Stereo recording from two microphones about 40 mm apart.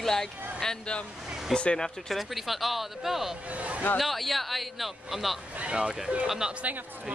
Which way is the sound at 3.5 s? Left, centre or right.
Right.